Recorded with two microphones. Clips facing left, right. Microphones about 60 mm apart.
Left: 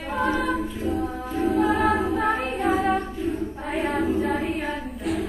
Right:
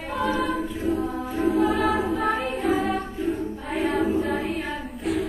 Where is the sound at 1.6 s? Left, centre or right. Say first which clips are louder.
Left 3 dB; left.